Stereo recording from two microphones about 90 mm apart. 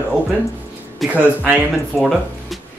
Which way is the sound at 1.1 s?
15° right (ahead or behind).